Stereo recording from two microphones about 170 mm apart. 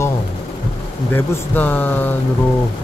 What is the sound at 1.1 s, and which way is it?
Speech, 10° left (ahead or behind).